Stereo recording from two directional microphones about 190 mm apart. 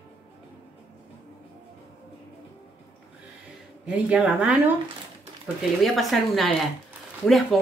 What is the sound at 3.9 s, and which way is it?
Speech, 5° right (ahead or behind).